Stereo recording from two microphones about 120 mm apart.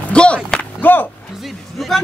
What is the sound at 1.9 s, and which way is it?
Speech, centre (ahead or behind).